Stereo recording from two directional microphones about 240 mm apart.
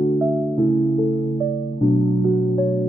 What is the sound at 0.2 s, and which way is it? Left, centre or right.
Music, centre.